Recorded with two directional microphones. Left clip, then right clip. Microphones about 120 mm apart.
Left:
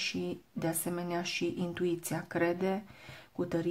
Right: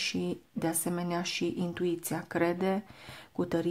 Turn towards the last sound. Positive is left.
turn(degrees=-20)  # may be behind; listen again after turning